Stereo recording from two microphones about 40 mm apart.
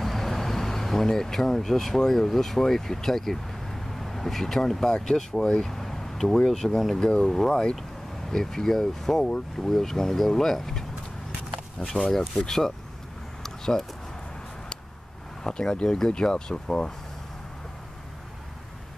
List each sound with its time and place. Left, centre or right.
0.0 s vehicle: centre
2.0 s speech: centre
5.6 s vehicle: centre
6.3 s speech: centre
13.4 s a sound: centre
15.4 s speech: centre